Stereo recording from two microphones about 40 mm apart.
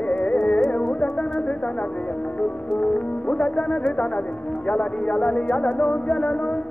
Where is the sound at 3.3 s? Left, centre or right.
Left.